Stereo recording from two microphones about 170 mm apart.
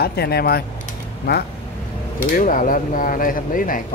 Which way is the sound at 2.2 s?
50° left (ahead or behind).